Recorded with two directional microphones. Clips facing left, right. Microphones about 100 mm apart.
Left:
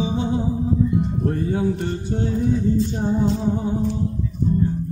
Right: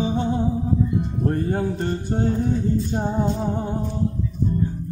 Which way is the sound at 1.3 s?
50° right (ahead or behind).